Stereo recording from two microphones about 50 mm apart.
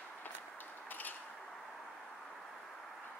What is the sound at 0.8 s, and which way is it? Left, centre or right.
Mechanisms, left.